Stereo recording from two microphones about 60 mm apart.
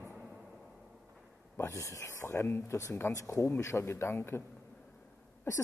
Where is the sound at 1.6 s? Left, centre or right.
Left.